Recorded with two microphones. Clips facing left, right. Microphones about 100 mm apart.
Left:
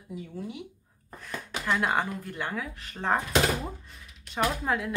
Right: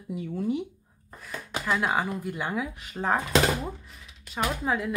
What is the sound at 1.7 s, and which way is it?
Speech, centre (ahead or behind).